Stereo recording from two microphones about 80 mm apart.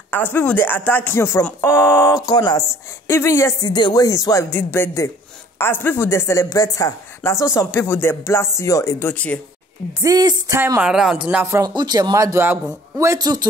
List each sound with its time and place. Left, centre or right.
0.1 s speech: left
1.6 s speech: left
2.2 s speech: left
3.1 s speech: left
3.6 s speech: left
4.5 s speech: left
6.5 s speech: left
9.0 s speech: centre
10.0 s a sound: right
10.8 s speech: centre
11.6 s speech: right
13.2 s speech: right